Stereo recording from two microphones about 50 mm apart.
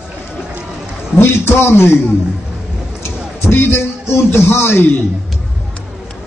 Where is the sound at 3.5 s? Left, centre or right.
Left.